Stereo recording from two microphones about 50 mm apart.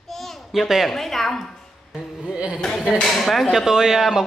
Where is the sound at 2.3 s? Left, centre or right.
Right.